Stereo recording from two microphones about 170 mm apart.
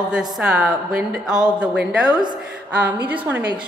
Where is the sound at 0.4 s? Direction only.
5° right (ahead or behind).